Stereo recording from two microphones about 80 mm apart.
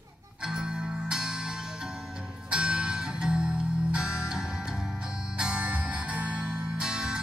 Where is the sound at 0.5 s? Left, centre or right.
Centre.